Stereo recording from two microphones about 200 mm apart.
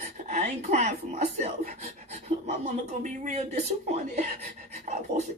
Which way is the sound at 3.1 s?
35° right (ahead or behind).